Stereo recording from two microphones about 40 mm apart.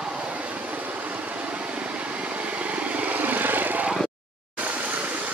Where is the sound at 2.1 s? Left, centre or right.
Right.